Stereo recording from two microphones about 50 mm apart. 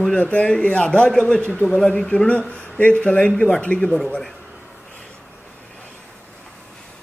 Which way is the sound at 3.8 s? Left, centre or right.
Centre.